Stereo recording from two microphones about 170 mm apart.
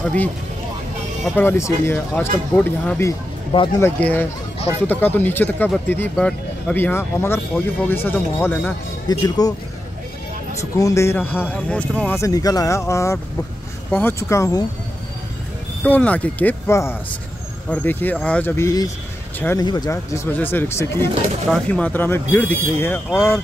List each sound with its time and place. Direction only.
0.0 s speech: 10° left (ahead or behind)
1.3 s speech: 15° left (ahead or behind)
9.1 s speech: 25° left (ahead or behind)
10.6 s speech: 20° left (ahead or behind)
12.2 s speech: 20° left (ahead or behind)
15.8 s speech: 10° left (ahead or behind)